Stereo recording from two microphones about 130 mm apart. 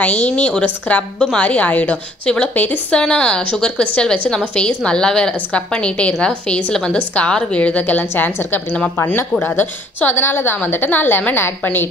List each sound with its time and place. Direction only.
0.0 s a woman's voice: 10° left (ahead or behind)